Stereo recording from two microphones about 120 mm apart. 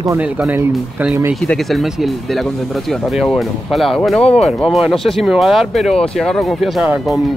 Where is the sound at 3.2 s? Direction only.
Centre (ahead or behind).